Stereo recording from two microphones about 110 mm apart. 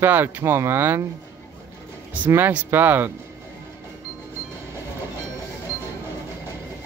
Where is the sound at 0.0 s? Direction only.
20° right (ahead or behind).